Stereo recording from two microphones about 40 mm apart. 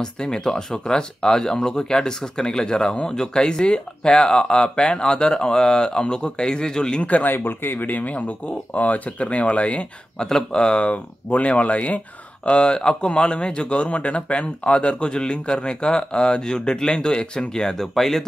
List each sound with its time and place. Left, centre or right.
0.0 s speech: centre
7.0 s speech: left
7.2 s speech: left
10.1 s speech: centre